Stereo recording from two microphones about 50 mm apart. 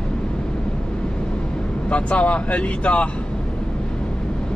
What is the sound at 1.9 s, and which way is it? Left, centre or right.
Speech, left.